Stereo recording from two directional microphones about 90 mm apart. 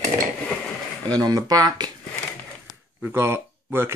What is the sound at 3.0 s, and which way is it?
Speech, 25° right (ahead or behind).